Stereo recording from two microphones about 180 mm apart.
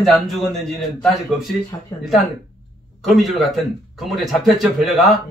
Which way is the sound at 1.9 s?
15° left (ahead or behind).